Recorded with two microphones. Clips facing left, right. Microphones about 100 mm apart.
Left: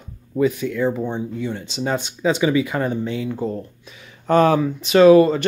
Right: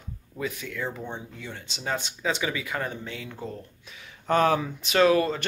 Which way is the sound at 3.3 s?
35° left (ahead or behind).